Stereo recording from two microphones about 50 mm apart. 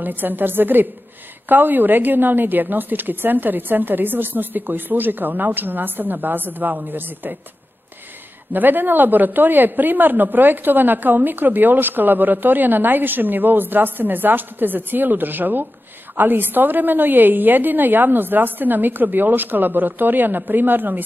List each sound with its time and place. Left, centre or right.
0.0 s a woman's voice: right
8.5 s a woman's voice: right